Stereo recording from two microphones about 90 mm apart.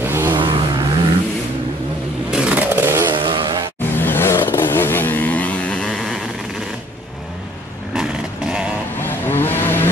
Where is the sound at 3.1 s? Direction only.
75° right (ahead or behind).